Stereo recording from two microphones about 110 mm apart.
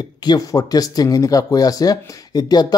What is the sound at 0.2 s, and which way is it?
A man's voice, 35° left (ahead or behind).